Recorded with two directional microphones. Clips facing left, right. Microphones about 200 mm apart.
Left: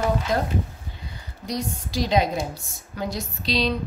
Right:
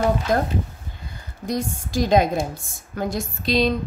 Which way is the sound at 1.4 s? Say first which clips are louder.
Right 3 dB; 50° right (ahead or behind).